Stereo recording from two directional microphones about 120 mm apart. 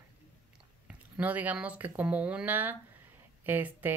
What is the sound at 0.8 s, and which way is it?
Speech, 15° right (ahead or behind).